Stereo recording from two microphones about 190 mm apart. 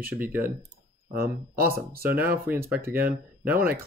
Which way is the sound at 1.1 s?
55° right (ahead or behind).